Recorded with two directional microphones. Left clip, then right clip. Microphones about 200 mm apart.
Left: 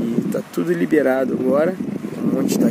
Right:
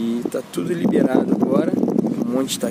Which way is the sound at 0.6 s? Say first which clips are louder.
Left 5 dB; centre (ahead or behind).